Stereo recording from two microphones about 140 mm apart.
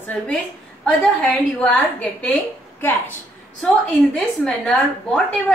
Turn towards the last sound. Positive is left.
turn(degrees=5)  # may be behind; listen again after turning